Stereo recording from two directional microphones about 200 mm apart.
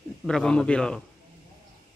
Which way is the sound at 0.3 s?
5° left (ahead or behind).